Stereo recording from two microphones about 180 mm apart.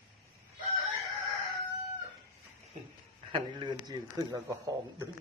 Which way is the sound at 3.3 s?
25° right (ahead or behind).